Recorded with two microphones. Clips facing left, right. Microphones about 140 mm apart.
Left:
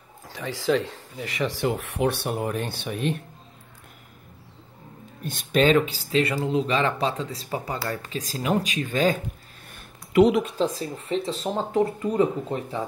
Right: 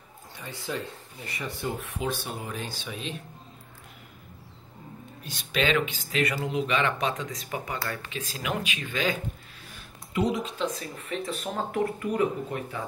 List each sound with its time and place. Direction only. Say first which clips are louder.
0.3 s speech: left 11 dB; 90° left; by 3.2 s 60° left (ahead or behind)
5.2 s speech: left 7 dB; 50° left (ahead or behind)
9.7 s a sound: left 3 dB; 65° left (ahead or behind)
10.6 s speech: left 6 dB; 35° left (ahead or behind)